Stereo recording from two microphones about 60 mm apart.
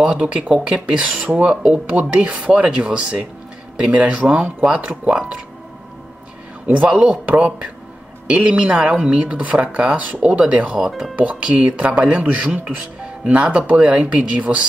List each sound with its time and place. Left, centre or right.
0.0 s speech: centre
6.9 s speech: centre
7.2 s speech: right
10.9 s speech: centre
11.1 s speech: centre